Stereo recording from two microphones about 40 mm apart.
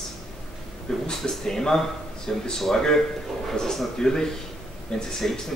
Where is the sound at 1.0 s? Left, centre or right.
Centre.